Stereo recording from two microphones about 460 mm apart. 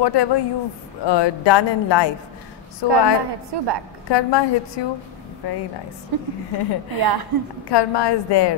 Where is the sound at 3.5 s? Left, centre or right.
Right.